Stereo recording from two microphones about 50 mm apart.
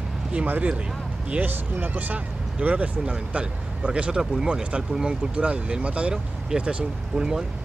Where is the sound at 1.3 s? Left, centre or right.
Right.